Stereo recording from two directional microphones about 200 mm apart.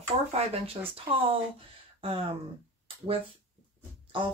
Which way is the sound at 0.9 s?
25° right (ahead or behind).